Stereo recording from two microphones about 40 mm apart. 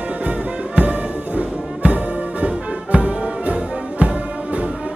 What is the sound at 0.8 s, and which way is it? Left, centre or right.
Music, right.